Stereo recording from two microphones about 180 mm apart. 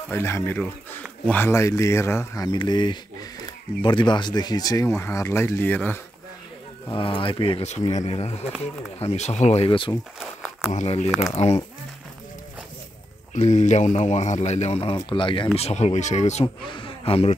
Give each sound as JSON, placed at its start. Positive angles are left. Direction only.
{"t": 0.1, "sound": "speech", "side_deg": 15}
{"t": 6.9, "sound": "a man's voice", "side_deg": 30}
{"t": 9.7, "sound": "speech", "side_deg": 30}
{"t": 10.7, "sound": "a man's voice", "side_deg": 40}
{"t": 13.3, "sound": "a man's voice", "side_deg": 40}
{"t": 16.6, "sound": "speech", "side_deg": 30}